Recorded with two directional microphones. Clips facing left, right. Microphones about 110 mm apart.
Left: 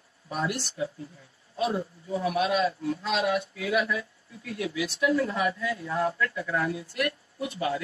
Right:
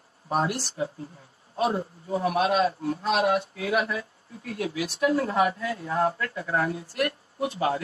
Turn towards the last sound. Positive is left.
turn(degrees=-40)  # may be behind; listen again after turning